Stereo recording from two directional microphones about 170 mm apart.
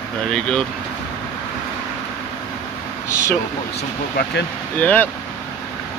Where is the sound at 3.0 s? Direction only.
15° left (ahead or behind).